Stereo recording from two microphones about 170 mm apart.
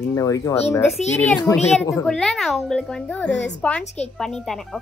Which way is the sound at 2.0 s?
5° left (ahead or behind).